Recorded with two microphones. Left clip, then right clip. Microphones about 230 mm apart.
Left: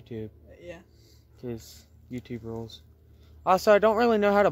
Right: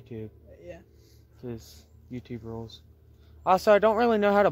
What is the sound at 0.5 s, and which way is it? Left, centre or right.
Music, left.